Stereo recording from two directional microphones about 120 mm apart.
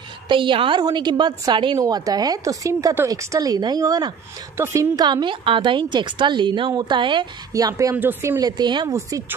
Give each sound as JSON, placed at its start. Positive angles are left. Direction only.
{"t": 0.3, "sound": "a woman's voice", "side_deg": -45}
{"t": 5.0, "sound": "a woman's voice", "side_deg": -40}
{"t": 7.5, "sound": "a woman's voice", "side_deg": -30}
{"t": 7.9, "sound": "speech", "side_deg": -15}
{"t": 8.4, "sound": "a woman's voice", "side_deg": -35}